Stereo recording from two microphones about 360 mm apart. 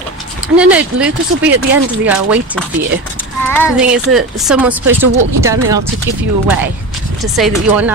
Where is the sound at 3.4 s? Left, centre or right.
Centre.